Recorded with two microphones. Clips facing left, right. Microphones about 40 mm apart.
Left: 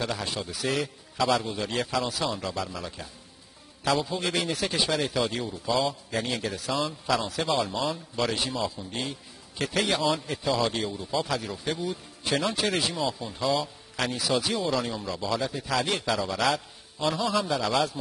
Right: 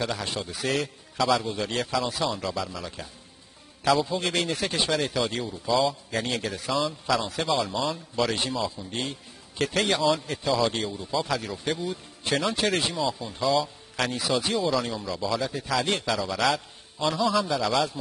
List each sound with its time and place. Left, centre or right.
0.0 s a man's voice: centre